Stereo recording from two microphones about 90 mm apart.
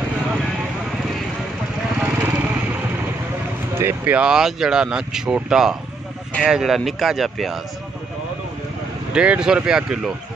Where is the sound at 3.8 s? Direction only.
25° right (ahead or behind).